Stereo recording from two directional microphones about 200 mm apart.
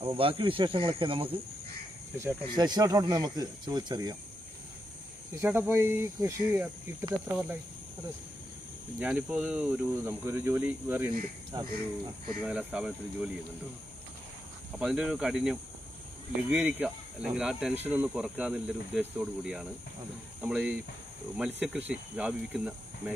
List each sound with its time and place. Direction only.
0.0 s speech: 25° right (ahead or behind)
2.4 s speech: 20° right (ahead or behind)
5.4 s speech: 10° right (ahead or behind)
9.0 s speech: 5° right (ahead or behind)
12.4 s speech: 5° right (ahead or behind)
14.8 s speech: 5° right (ahead or behind)